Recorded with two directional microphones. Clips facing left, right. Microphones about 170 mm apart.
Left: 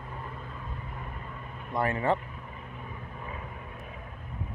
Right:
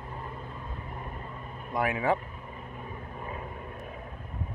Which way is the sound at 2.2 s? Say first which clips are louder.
Right 1 dB; 40° right (ahead or behind).